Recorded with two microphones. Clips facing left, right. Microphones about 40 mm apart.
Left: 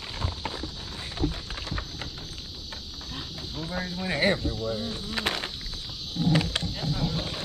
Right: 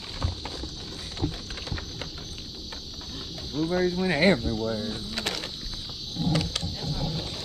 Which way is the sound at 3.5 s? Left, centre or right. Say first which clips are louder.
Right 9 dB; centre.